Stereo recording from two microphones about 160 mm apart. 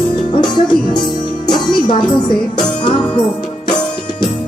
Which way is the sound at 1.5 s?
30° left (ahead or behind).